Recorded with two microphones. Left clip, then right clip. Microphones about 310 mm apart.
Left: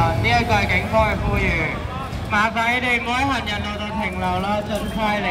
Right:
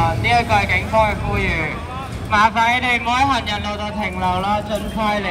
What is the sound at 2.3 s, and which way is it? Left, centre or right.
Speech, centre.